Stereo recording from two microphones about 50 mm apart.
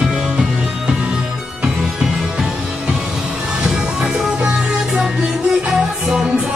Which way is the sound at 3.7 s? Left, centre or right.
Centre.